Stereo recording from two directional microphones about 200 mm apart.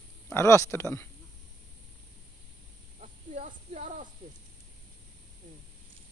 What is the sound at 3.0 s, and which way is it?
Snake, 35° right (ahead or behind).